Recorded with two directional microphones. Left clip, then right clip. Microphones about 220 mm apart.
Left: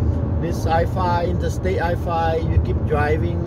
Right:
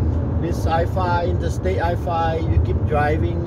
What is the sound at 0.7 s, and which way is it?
Speech, 25° left (ahead or behind).